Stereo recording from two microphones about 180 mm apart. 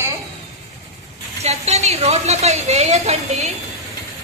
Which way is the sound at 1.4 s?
40° right (ahead or behind).